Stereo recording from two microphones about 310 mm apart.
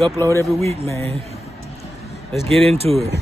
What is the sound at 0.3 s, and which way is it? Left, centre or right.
Speech, centre.